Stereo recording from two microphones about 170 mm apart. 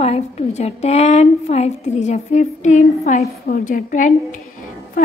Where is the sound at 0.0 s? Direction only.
40° left (ahead or behind).